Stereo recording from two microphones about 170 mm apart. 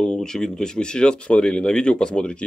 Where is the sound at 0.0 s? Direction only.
5° left (ahead or behind).